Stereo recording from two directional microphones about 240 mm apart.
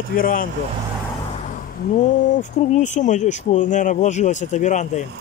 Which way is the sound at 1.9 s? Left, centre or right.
Left.